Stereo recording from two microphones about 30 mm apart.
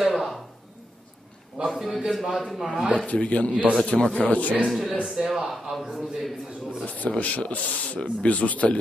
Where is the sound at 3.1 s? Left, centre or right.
Left.